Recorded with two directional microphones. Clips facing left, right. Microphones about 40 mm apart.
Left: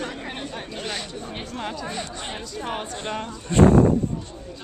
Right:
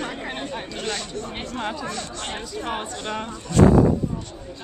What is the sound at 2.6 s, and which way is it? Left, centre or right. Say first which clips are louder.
Speech: right 1 dB; centre.